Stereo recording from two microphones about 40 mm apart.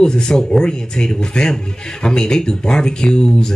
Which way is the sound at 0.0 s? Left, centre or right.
Centre.